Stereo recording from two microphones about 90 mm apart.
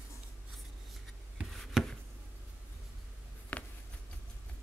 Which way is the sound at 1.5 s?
Centre (ahead or behind).